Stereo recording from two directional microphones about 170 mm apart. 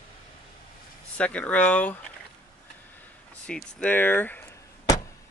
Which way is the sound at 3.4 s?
10° left (ahead or behind).